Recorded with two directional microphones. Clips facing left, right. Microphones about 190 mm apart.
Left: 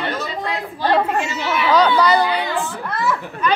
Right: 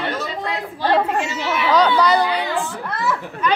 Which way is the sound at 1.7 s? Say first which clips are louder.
Left 1 dB; 5° left (ahead or behind).